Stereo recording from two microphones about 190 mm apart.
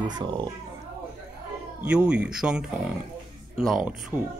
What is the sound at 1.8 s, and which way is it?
Speech, 5° right (ahead or behind).